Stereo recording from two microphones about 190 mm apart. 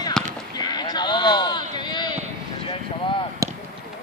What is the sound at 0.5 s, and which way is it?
Sheep, 20° left (ahead or behind).